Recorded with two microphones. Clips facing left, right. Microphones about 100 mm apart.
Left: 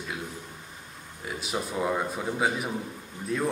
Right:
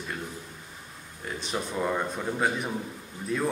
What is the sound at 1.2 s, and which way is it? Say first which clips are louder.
A man's voice: even; 5° left (ahead or behind).